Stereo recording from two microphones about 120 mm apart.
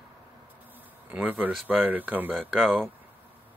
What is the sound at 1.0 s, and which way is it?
Speech, 15° right (ahead or behind).